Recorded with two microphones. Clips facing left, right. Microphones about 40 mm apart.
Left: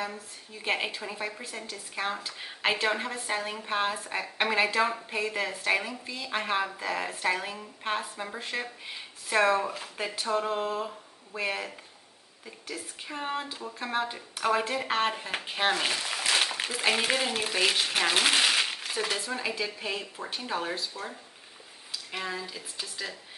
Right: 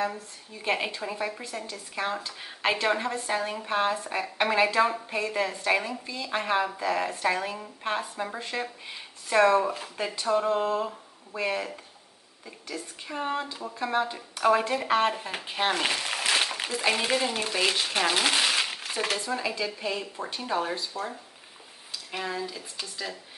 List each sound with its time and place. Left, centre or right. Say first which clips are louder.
0.0 s a woman's voice: right 5 dB; centre
15.7 s speech: right 2 dB; centre
16.7 s a woman's voice: right 1 dB; centre
22.1 s a woman's voice: right 3 dB; centre